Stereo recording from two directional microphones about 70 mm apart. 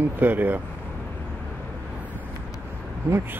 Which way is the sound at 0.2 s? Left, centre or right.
Right.